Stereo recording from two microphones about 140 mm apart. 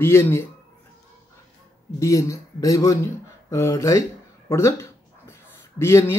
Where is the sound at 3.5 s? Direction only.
20° left (ahead or behind).